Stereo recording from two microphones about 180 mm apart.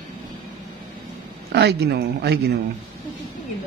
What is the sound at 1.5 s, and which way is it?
Speech, 65° right (ahead or behind).